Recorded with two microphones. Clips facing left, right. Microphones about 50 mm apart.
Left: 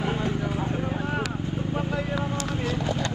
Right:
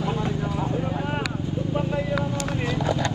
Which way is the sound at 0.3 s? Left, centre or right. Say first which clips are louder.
Right 1 dB; left.